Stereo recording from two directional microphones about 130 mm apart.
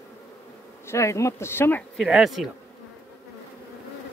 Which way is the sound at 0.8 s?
20° left (ahead or behind).